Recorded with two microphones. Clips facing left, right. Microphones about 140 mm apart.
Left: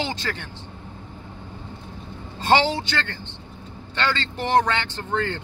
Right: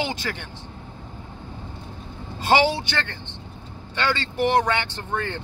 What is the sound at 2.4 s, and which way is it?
Speech, 10° right (ahead or behind).